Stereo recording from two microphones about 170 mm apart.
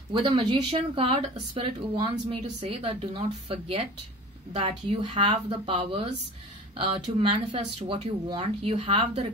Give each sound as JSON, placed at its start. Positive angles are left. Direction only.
{"t": 0.1, "sound": "speech", "side_deg": -30}